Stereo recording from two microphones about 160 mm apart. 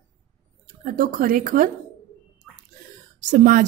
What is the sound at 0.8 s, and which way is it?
Speech, 60° right (ahead or behind).